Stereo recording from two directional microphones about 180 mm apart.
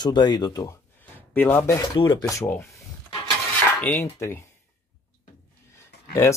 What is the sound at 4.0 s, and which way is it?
Speech, 15° left (ahead or behind).